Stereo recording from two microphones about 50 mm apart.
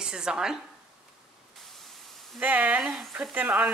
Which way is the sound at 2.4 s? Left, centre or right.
Right.